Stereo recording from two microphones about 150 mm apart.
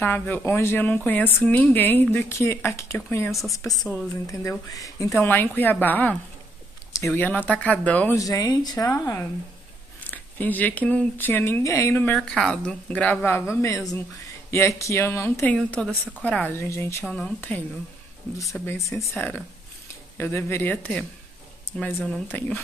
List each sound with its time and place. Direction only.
0.0 s a woman's voice: 10° left (ahead or behind)
8.2 s a woman's voice: 25° left (ahead or behind)
10.0 s a woman's voice: 10° left (ahead or behind)
15.5 s a woman's voice: 5° left (ahead or behind)
17.0 s speech: 5° left (ahead or behind)
18.7 s a woman's voice: 20° left (ahead or behind)